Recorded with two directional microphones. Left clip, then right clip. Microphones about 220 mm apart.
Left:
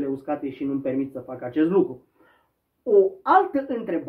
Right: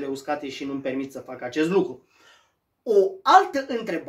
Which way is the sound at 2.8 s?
15° right (ahead or behind).